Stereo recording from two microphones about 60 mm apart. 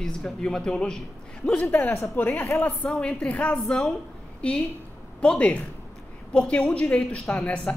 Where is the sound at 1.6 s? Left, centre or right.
Left.